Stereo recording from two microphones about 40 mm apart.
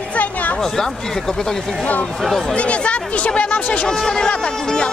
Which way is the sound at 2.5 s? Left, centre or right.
Left.